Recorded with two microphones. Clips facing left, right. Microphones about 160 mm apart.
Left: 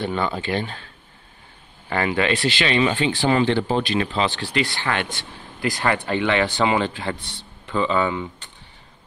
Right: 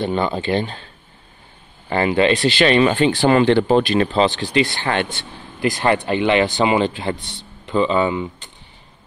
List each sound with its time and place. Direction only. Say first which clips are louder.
0.0 s speech: right 4 dB; 25° right (ahead or behind)
1.9 s speech: right 5 dB; 25° right (ahead or behind)
2.6 s speech: right 7 dB; 55° right (ahead or behind)
3.9 s speech: right 6 dB; 40° right (ahead or behind)
4.4 s speech: right 5 dB; 25° right (ahead or behind)